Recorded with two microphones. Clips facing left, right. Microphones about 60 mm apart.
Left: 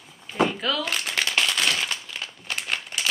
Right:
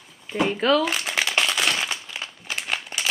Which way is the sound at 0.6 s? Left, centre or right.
Right.